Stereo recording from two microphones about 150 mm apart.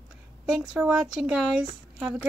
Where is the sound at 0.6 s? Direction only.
5° right (ahead or behind).